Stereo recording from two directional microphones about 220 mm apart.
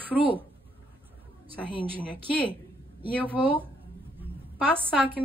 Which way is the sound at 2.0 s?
5° left (ahead or behind).